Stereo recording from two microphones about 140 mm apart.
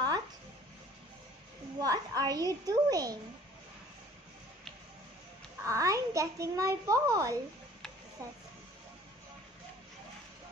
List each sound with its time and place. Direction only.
1.8 s a child's voice: 25° right (ahead or behind)
5.7 s a child's voice: 25° right (ahead or behind)